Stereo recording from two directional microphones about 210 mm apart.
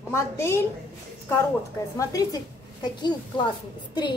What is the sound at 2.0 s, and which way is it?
A woman's voice, 15° left (ahead or behind).